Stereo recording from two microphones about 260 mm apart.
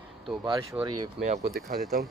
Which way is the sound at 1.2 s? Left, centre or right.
Right.